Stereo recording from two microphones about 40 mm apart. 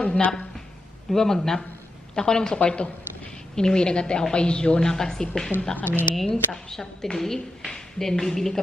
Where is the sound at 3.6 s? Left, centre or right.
Centre.